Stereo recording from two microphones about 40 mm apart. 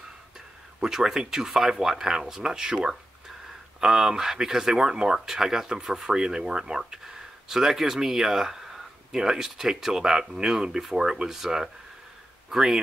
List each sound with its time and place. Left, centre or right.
0.7 s speech: centre